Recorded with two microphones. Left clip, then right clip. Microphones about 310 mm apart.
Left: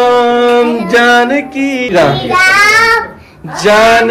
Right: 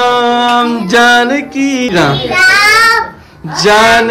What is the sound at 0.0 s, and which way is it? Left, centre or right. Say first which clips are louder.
Music: left 1 dB; centre.